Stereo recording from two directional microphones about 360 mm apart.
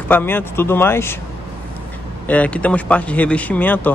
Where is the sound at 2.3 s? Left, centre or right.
Centre.